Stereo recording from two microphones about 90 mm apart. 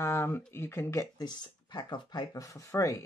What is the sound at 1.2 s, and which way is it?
Speech, 55° left (ahead or behind).